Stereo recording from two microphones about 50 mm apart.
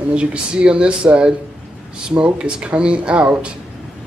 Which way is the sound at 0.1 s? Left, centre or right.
Centre.